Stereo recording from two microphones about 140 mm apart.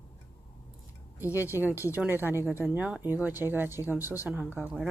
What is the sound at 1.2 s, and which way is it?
Speech, 15° right (ahead or behind).